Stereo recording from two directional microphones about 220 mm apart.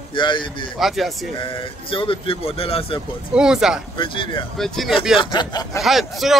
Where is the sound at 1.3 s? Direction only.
25° left (ahead or behind).